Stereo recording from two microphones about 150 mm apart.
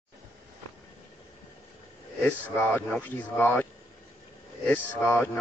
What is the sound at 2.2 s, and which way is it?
Speech, 10° left (ahead or behind).